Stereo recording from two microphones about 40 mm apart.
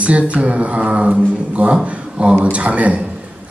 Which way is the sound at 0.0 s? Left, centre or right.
Right.